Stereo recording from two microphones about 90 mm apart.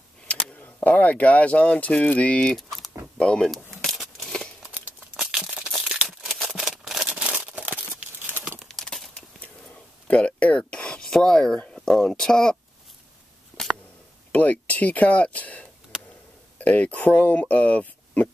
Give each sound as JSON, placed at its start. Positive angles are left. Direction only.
{"t": 0.3, "sound": "speech", "side_deg": 15}
{"t": 2.5, "sound": "keys jangling", "side_deg": 0}
{"t": 3.2, "sound": "speech", "side_deg": 10}
{"t": 3.7, "sound": "tearing", "side_deg": 0}
{"t": 5.1, "sound": "crumpling", "side_deg": -5}
{"t": 6.0, "sound": "a sound", "side_deg": 0}
{"t": 8.3, "sound": "crumpling", "side_deg": -20}
{"t": 8.5, "sound": "crumpling", "side_deg": 5}
{"t": 10.0, "sound": "a sound", "side_deg": 15}
{"t": 14.3, "sound": "speech", "side_deg": 15}